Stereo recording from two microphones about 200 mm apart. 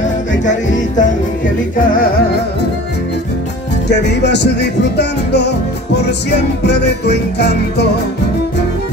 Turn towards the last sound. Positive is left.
turn(degrees=55)  # may be behind; listen again after turning